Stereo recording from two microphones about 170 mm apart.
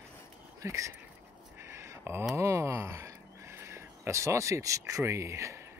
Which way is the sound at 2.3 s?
15° right (ahead or behind).